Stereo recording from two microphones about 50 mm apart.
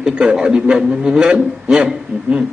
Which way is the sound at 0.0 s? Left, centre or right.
Centre.